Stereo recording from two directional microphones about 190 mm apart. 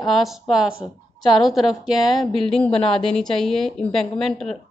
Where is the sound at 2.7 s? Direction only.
30° left (ahead or behind).